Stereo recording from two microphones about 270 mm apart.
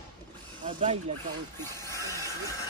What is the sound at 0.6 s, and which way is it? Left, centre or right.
Snake, right.